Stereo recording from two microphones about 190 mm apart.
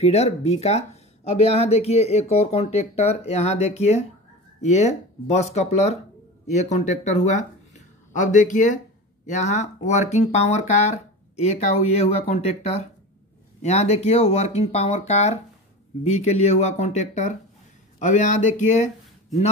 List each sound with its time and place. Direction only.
0.0 s speech: 35° left (ahead or behind)